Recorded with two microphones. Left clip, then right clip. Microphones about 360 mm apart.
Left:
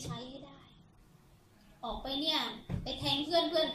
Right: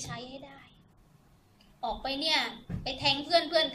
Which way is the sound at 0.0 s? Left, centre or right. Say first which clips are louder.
Right 4 dB; right.